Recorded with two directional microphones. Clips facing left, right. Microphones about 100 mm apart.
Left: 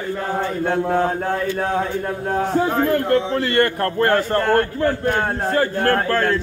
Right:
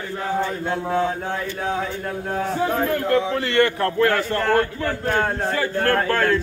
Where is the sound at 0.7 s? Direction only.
60° left (ahead or behind).